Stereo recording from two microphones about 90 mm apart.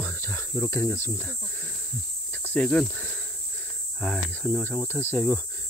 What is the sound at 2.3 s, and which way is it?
Cricket, 20° left (ahead or behind).